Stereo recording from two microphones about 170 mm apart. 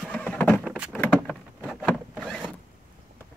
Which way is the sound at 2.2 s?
Centre (ahead or behind).